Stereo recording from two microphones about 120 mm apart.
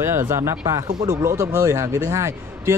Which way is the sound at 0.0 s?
20° right (ahead or behind).